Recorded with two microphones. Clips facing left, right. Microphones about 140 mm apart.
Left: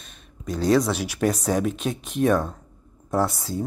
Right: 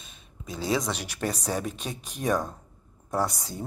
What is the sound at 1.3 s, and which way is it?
Speech, 10° right (ahead or behind).